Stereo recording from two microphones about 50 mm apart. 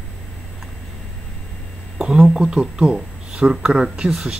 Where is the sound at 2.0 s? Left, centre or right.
Centre.